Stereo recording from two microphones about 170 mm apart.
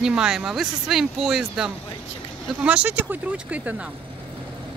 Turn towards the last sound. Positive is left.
turn(degrees=-10)  # may be behind; listen again after turning